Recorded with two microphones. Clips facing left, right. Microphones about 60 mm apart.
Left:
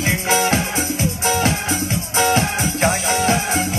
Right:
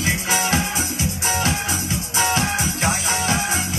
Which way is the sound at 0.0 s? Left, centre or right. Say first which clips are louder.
Left 4 dB; left.